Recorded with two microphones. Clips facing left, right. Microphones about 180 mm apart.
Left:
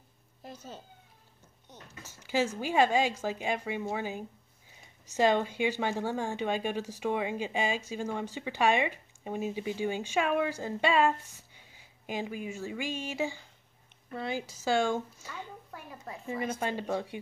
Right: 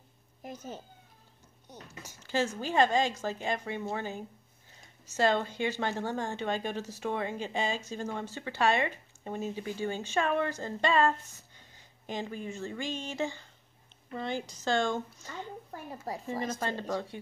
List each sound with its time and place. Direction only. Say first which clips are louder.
0.4 s speech: right 3 dB; 20° right (ahead or behind)
2.2 s speech: left 1 dB; 10° left (ahead or behind)
15.7 s speech: right 5 dB; 35° right (ahead or behind)
16.4 s speech: left 3 dB; 15° left (ahead or behind)